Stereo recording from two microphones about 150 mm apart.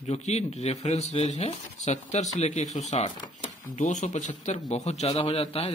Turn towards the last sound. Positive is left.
turn(degrees=40)  # may be behind; listen again after turning